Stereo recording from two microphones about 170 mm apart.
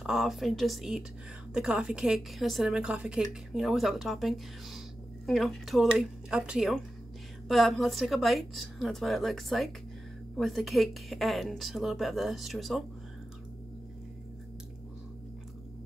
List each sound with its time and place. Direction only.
0.0 s a woman's voice: centre (ahead or behind)